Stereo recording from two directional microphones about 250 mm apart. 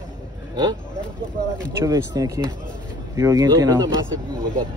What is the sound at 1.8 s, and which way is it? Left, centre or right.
Speech, centre.